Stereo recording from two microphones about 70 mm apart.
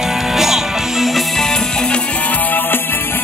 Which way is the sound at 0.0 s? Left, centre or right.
Centre.